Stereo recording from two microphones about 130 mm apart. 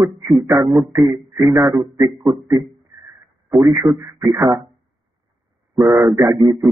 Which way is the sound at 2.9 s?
20° right (ahead or behind).